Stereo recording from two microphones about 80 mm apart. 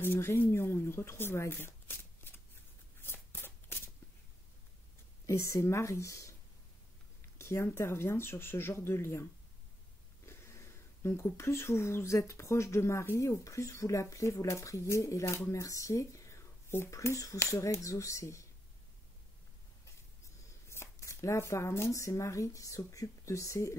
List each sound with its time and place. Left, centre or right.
0.0 s speech: left
3.0 s shuffling cards: left
5.2 s speech: left
20.4 s speech: left